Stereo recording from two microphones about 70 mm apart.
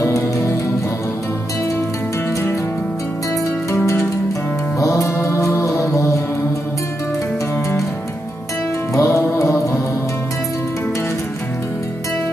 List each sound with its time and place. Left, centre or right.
4.7 s music: left
8.9 s music: left